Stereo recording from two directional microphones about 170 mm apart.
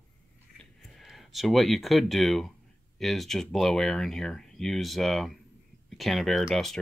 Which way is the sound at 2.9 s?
Centre (ahead or behind).